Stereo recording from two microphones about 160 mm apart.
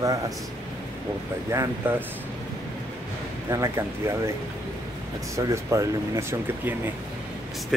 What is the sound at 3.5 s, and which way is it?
Speech, 20° right (ahead or behind).